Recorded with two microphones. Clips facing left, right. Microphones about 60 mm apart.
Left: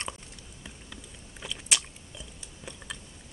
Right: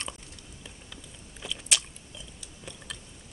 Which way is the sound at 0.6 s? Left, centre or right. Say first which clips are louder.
Left 3 dB; centre.